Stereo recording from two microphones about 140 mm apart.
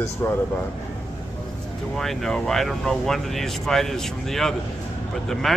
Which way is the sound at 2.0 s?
5° left (ahead or behind).